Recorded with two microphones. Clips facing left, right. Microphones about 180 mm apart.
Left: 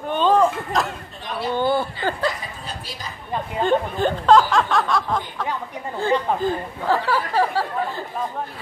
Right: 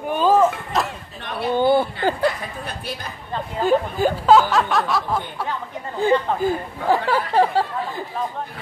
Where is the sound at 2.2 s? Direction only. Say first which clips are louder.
Right 3 dB; 60° right (ahead or behind).